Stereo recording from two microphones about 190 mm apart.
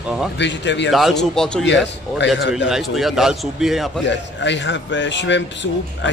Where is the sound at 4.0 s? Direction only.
70° left (ahead or behind).